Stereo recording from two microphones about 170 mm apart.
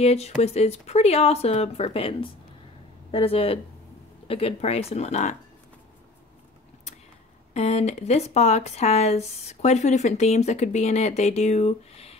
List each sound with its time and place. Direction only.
0.0 s speech: 40° left (ahead or behind)
7.5 s speech: 40° left (ahead or behind)